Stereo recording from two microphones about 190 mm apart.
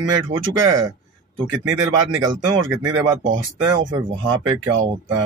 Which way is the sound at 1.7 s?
20° right (ahead or behind).